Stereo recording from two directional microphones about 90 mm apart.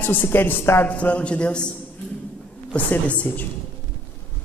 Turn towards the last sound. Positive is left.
turn(degrees=15)  # may be behind; listen again after turning